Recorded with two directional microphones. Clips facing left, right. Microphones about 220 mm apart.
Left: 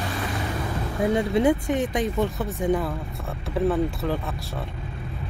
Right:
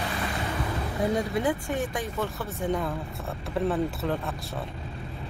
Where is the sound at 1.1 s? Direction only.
25° left (ahead or behind).